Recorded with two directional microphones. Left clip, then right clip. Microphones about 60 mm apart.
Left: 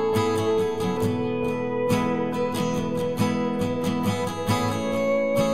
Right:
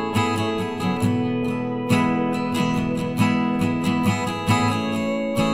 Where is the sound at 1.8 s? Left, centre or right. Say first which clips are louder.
Right 5 dB; right.